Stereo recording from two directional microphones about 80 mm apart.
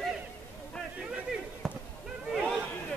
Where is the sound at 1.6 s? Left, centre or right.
Centre.